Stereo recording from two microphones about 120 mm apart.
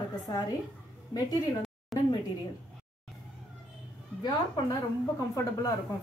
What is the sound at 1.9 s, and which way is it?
Speech, centre (ahead or behind).